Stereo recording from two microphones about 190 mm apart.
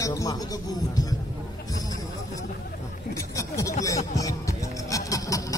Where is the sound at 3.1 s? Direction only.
15° left (ahead or behind).